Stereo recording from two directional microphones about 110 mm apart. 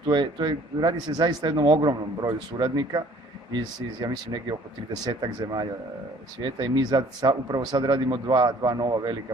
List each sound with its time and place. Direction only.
0.0 s a man's voice: 45° right (ahead or behind)